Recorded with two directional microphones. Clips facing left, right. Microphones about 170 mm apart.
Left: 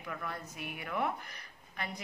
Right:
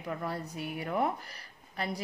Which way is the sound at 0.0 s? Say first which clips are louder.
Right 5 dB; 30° right (ahead or behind).